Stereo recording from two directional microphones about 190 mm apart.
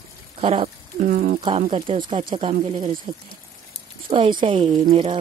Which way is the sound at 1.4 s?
30° right (ahead or behind).